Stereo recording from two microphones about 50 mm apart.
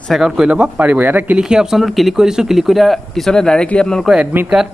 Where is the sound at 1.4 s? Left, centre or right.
Centre.